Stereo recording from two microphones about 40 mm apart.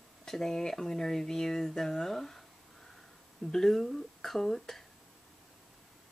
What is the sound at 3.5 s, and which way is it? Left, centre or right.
Speech, centre.